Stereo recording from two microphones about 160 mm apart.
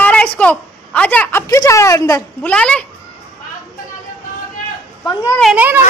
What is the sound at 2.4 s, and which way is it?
Speech, 5° left (ahead or behind).